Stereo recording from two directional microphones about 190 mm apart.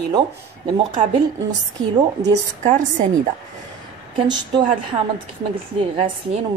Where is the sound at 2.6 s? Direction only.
40° right (ahead or behind).